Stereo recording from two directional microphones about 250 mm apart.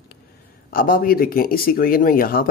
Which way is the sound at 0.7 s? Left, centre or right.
Left.